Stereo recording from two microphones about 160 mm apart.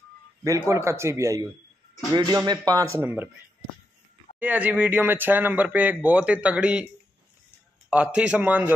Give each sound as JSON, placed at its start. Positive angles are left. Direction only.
{"t": 0.4, "sound": "speech", "side_deg": -20}
{"t": 4.4, "sound": "speech", "side_deg": -10}
{"t": 7.9, "sound": "speech", "side_deg": -10}